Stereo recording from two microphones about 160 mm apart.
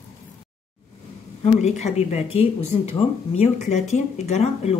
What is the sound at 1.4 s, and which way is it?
Speech, 45° left (ahead or behind).